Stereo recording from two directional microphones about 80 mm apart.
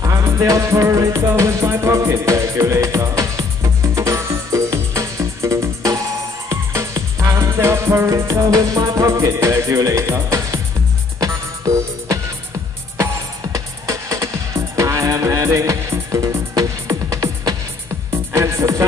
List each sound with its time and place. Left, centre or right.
0.2 s music: right